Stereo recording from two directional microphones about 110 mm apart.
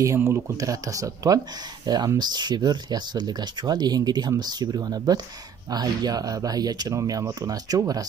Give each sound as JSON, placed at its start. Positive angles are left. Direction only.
{"t": 0.0, "sound": "speech", "side_deg": -25}